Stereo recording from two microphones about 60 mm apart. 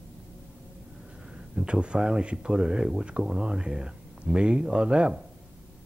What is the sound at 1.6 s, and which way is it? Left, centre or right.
Speech, centre.